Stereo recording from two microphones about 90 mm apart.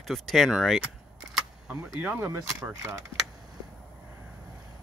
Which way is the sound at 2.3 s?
35° right (ahead or behind).